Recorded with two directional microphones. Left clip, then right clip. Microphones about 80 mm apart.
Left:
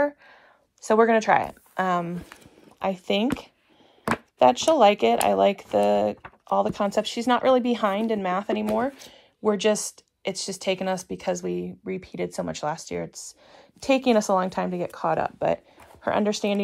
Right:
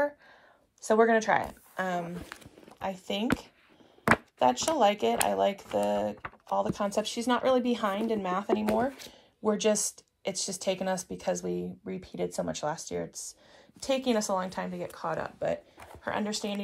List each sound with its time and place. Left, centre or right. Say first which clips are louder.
0.8 s speech: left 5 dB; right
13.7 s speech: left 8 dB; right